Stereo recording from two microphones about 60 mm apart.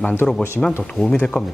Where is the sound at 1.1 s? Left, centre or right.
Centre.